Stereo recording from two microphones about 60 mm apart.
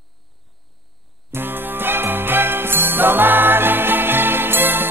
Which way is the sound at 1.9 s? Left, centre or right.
Right.